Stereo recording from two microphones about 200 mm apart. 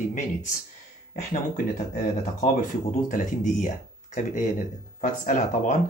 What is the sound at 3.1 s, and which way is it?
Speech, 40° left (ahead or behind).